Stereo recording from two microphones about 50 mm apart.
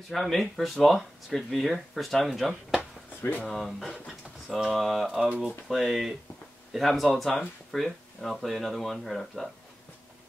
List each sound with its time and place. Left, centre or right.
0.1 s speech: centre